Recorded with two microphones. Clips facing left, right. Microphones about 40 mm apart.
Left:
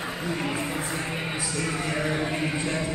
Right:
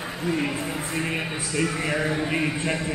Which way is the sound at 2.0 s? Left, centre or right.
Centre.